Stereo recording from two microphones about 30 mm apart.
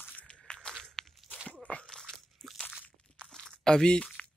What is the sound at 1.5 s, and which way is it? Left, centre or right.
Crunch, left.